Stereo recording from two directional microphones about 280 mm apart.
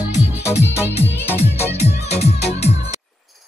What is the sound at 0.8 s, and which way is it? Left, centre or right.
Music, centre.